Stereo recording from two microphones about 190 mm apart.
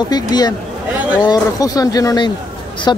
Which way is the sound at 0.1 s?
20° left (ahead or behind).